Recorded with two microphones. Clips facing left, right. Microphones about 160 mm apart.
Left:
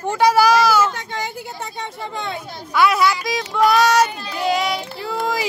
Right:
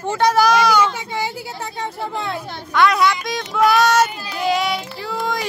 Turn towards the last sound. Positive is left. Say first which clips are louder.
# left 1 dB
turn(degrees=0)  # may be behind; listen again after turning